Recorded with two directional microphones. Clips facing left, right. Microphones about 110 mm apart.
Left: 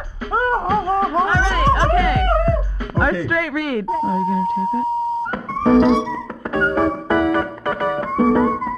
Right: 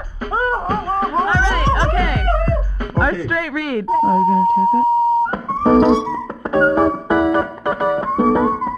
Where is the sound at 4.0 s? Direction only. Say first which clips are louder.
Right 8 dB; 45° right (ahead or behind).